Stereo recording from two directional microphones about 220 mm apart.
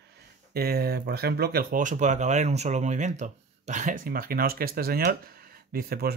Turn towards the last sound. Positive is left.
turn(degrees=-45)  # may be behind; listen again after turning